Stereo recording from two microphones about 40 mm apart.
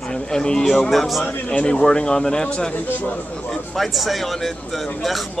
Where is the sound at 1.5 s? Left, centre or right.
Left.